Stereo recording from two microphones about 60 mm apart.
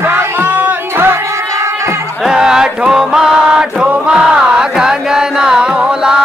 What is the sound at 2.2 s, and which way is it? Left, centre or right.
Music, centre.